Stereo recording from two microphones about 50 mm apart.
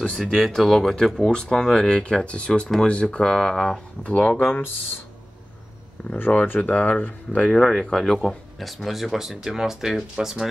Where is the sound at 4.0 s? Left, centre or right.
Left.